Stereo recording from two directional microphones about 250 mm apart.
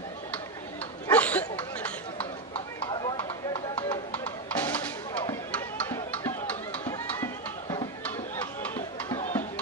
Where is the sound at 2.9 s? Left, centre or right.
Centre.